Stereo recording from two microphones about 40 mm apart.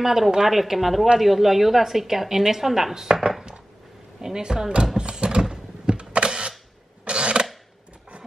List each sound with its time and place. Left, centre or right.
0.0 s a woman's voice: centre
4.9 s camera: right
7.1 s a sound: right